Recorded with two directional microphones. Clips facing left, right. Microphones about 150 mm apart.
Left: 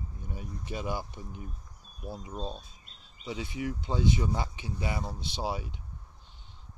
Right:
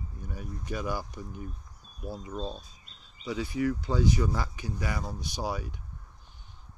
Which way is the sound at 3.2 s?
25° left (ahead or behind).